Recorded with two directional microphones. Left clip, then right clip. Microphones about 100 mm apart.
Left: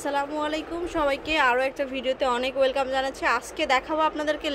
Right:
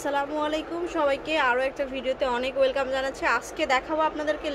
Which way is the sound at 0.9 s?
25° left (ahead or behind).